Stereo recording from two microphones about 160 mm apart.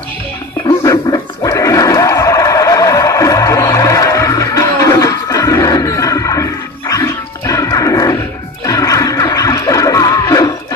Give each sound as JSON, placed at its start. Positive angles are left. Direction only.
{"t": 0.8, "sound": "music", "side_deg": 20}